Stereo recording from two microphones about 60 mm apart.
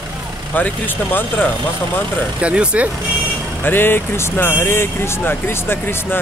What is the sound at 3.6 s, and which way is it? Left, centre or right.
Speech, left.